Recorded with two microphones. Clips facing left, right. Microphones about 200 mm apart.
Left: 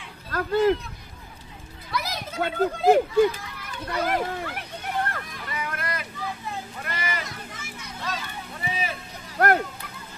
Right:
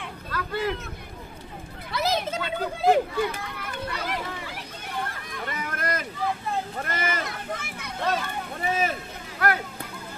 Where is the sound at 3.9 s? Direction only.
50° left (ahead or behind).